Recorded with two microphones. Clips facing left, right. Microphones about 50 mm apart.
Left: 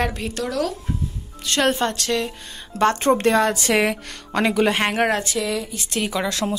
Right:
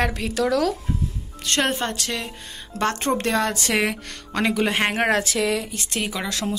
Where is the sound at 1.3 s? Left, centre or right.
Right.